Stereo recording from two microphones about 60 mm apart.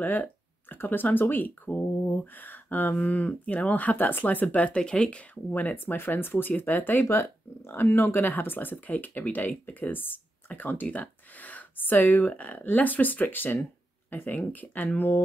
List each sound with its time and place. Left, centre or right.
0.0 s speech: left
4.7 s speech: centre
5.3 s speech: left
7.1 s speech: left